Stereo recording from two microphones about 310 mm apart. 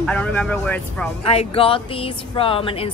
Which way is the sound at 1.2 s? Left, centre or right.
Centre.